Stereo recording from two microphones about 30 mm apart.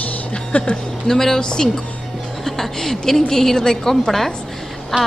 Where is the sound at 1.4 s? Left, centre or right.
Left.